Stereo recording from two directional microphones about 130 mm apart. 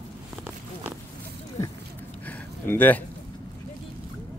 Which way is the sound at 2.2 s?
15° left (ahead or behind).